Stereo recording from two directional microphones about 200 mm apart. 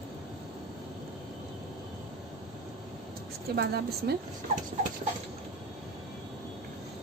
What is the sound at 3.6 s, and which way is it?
Speech, 55° right (ahead or behind).